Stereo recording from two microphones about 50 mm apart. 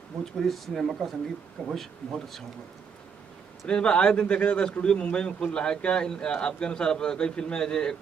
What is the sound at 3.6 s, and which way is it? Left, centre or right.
Speech, centre.